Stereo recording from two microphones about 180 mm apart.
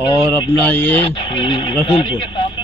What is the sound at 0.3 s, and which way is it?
Speech, 10° left (ahead or behind).